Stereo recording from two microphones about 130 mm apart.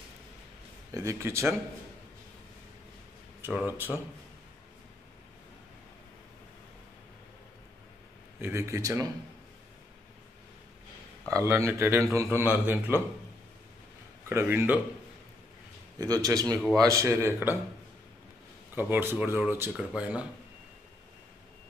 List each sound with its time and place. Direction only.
0.9 s a man's voice: 20° right (ahead or behind)
3.6 s speech: 15° right (ahead or behind)
8.4 s a man's voice: 15° right (ahead or behind)
11.2 s a man's voice: 20° right (ahead or behind)
14.3 s speech: 15° right (ahead or behind)
16.0 s a man's voice: 30° right (ahead or behind)
18.8 s speech: 15° right (ahead or behind)